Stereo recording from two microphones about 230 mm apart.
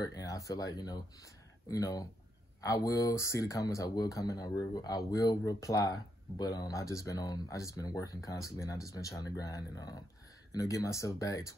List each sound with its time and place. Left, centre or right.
0.0 s speech: centre